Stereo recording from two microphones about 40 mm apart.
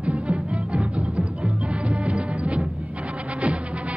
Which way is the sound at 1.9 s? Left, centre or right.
Right.